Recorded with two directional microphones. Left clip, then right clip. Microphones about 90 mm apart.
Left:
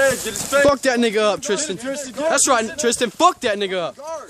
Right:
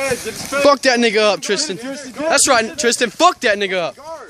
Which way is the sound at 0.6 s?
10° left (ahead or behind).